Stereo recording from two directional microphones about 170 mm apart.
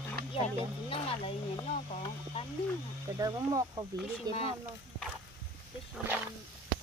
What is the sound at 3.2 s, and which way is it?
Speech, 20° right (ahead or behind).